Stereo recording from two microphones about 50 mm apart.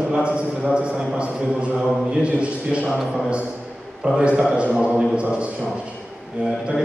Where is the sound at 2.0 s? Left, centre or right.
Right.